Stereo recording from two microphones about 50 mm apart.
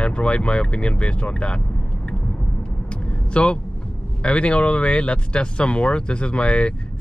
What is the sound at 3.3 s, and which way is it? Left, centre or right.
Speech, left.